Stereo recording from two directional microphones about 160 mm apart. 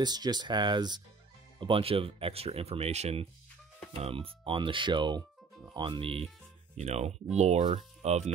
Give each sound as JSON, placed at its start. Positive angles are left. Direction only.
{"t": 0.0, "sound": "speech", "side_deg": -25}